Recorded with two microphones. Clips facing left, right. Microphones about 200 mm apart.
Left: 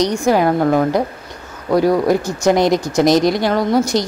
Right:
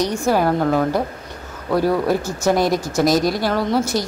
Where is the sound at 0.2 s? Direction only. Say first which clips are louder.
Left 2 dB; 15° left (ahead or behind).